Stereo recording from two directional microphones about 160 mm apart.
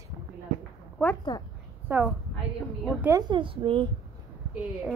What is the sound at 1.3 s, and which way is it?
Speech, 25° left (ahead or behind).